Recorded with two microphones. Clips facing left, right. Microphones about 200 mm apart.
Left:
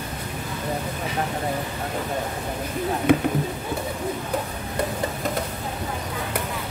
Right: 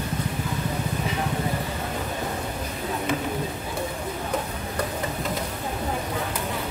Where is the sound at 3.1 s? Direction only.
60° left (ahead or behind).